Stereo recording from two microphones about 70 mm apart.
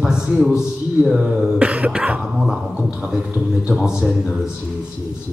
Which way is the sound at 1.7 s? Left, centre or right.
Centre.